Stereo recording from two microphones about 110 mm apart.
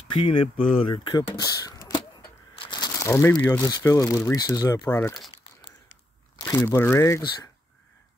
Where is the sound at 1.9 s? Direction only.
45° left (ahead or behind).